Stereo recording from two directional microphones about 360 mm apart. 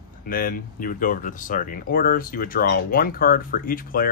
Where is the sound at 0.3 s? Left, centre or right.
Left.